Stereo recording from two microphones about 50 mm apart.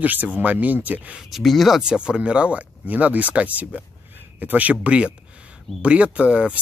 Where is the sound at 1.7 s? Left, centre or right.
Centre.